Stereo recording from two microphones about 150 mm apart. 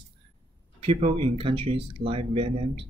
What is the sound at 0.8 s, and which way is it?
Speech, 40° right (ahead or behind).